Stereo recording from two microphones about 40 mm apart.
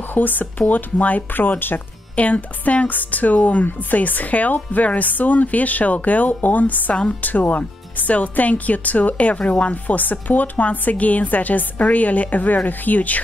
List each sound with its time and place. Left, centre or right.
0.1 s speech: left
2.1 s speech: left